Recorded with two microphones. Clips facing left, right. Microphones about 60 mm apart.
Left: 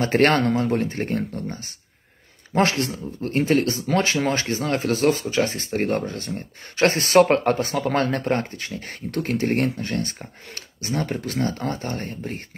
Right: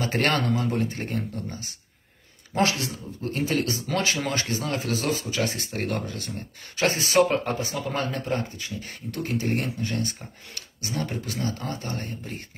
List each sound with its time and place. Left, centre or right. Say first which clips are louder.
0.0 s speech: left 6 dB; left